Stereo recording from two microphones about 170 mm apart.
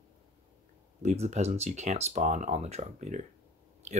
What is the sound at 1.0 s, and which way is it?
Speech, 40° right (ahead or behind).